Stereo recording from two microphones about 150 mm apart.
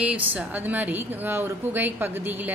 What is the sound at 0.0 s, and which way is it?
A woman's voice, 10° right (ahead or behind).